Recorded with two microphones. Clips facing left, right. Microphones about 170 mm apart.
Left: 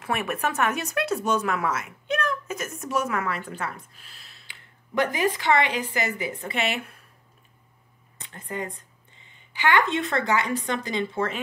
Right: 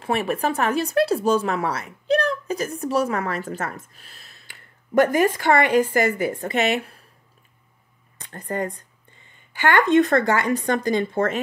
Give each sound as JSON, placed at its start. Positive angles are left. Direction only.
{"t": 0.0, "sound": "speech", "side_deg": -30}
{"t": 8.2, "sound": "speech", "side_deg": -45}